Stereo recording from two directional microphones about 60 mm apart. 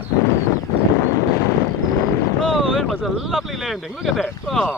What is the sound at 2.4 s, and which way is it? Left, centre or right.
Speech, centre.